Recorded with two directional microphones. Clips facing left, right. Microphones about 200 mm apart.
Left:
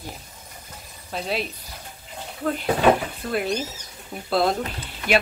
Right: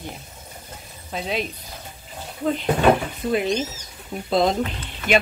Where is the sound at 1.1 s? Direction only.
Centre (ahead or behind).